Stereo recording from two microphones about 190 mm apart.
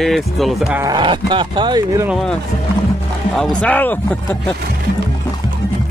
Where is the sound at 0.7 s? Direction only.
20° right (ahead or behind).